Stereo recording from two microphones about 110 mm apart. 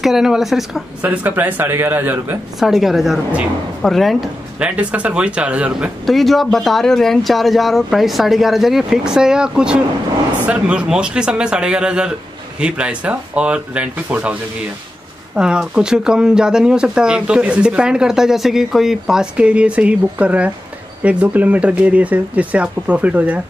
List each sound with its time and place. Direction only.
0.0 s speech: 5° right (ahead or behind)
1.0 s speech: 15° right (ahead or behind)
2.6 s speech: 5° right (ahead or behind)
4.6 s speech: 10° right (ahead or behind)
6.0 s speech: centre (ahead or behind)
15.3 s speech: 5° right (ahead or behind)